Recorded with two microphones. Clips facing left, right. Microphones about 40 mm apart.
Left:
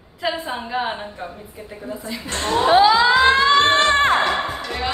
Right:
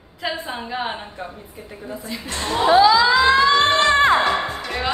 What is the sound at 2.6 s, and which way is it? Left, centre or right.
Speech, left.